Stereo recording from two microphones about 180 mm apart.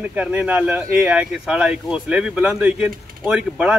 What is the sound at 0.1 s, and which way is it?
Speech, 5° right (ahead or behind).